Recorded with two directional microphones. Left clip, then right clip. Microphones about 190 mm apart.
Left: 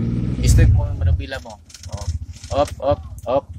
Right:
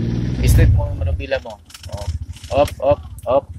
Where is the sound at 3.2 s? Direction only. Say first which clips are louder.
Right 2 dB; 30° left (ahead or behind).